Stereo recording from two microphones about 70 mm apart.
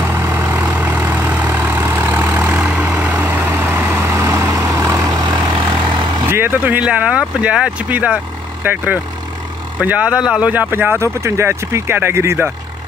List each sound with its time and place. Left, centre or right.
0.0 s vehicle: right
2.9 s vehicle: centre; by 5.0 s right
5.1 s vehicle: right
6.2 s vehicle: right
6.8 s speech: centre
10.5 s speech: right
11.0 s speech: right